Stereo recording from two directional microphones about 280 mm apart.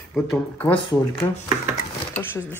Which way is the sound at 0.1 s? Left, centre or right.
Centre.